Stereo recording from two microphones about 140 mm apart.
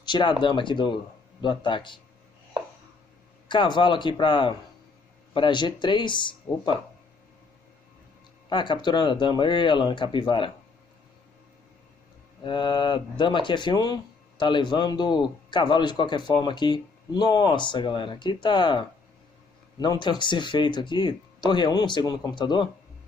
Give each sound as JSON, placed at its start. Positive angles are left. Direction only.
{"t": 0.0, "sound": "speech", "side_deg": 35}
{"t": 2.6, "sound": "a sound", "side_deg": -45}
{"t": 3.4, "sound": "speech", "side_deg": 35}
{"t": 8.5, "sound": "speech", "side_deg": 35}
{"t": 12.4, "sound": "speech", "side_deg": 35}